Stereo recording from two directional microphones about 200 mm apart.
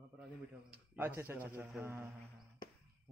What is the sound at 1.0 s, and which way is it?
Speech, 10° right (ahead or behind).